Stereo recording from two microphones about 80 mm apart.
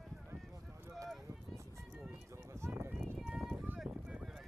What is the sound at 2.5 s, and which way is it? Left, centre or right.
Run, right.